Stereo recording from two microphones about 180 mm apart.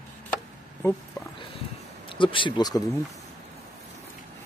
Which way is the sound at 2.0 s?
30° left (ahead or behind).